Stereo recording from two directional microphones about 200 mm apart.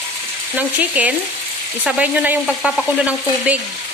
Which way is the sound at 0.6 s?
5° right (ahead or behind).